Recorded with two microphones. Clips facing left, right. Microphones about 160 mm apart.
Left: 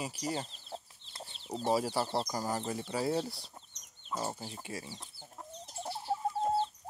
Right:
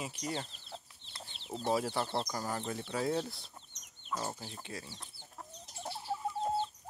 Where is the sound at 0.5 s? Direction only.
40° left (ahead or behind).